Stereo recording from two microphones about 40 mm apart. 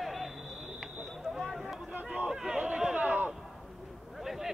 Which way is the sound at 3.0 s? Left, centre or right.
Right.